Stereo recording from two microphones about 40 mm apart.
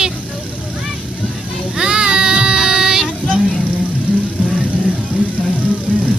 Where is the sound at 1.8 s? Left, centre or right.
Right.